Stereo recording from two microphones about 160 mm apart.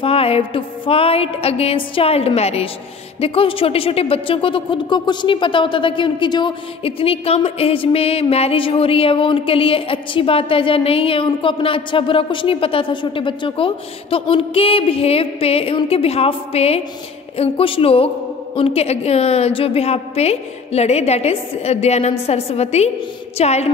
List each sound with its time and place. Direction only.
0.0 s speech: 40° left (ahead or behind)